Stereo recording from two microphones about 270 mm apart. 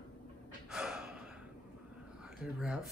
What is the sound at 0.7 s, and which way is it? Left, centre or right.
Gasp, centre.